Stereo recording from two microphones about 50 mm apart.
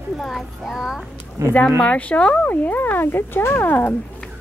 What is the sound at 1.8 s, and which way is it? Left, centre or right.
Speech, left.